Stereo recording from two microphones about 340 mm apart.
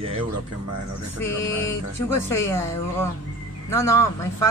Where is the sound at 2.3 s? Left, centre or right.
Centre.